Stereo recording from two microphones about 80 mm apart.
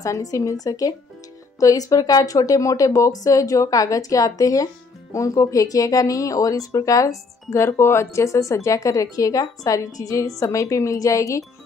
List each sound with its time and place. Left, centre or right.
0.0 s speech: left